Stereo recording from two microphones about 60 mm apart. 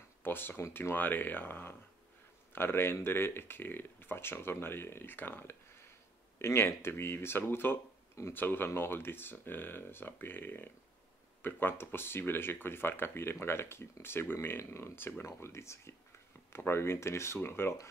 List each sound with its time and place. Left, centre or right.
0.2 s speech: left